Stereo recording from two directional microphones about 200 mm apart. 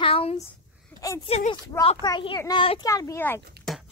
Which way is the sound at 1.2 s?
30° left (ahead or behind).